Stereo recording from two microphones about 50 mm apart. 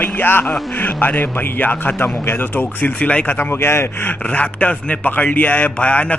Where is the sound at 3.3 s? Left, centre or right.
Left.